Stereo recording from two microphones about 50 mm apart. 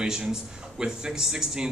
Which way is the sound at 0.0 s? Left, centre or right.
Centre.